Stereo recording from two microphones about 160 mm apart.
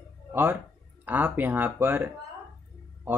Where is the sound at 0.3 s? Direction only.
15° right (ahead or behind).